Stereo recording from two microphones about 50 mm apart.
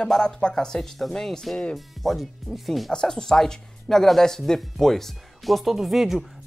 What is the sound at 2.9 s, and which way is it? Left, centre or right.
Speech, centre.